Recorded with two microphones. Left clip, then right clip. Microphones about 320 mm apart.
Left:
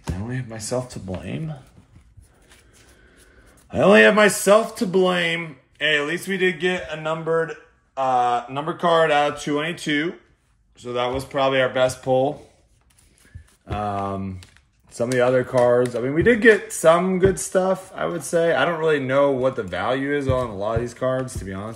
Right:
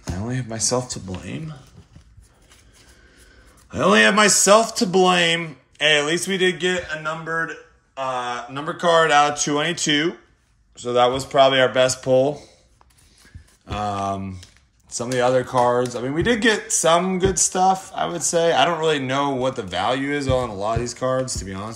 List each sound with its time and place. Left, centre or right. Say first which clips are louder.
0.3 s speech: right 5 dB; centre
3.7 s speech: left 2 dB; centre
8.0 s mantra: left 6 dB; centre
8.6 s speech: right 2 dB; centre
13.7 s speech: right 1 dB; centre